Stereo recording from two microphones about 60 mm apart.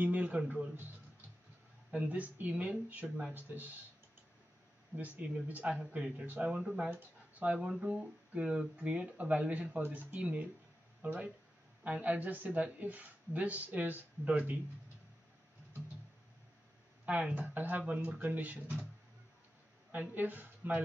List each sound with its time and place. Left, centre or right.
0.0 s a sound: right
1.9 s speech: right
3.0 s speech: centre
3.3 s speech: right
4.9 s speech: right
6.6 s speech: centre
6.9 s speech: right
17.0 s speech: right
19.9 s speech: right